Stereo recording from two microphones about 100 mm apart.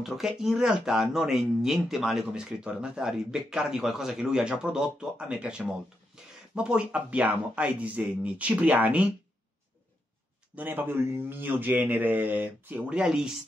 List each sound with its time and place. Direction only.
0.0 s speech: 5° right (ahead or behind)
10.5 s speech: 15° right (ahead or behind)